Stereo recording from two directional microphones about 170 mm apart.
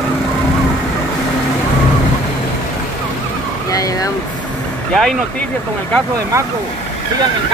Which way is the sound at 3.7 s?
20° left (ahead or behind).